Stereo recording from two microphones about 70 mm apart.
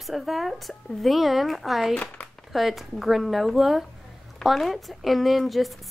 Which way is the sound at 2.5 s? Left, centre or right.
Centre.